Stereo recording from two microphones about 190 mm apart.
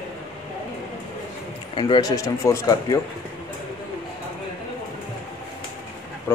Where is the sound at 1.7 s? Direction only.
20° left (ahead or behind).